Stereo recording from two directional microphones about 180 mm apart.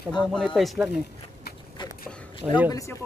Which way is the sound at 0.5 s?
Centre (ahead or behind).